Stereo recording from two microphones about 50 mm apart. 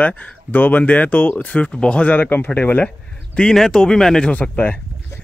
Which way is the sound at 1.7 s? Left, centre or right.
Left.